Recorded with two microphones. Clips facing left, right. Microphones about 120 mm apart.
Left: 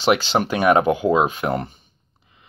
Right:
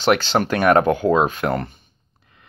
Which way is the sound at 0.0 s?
5° left (ahead or behind).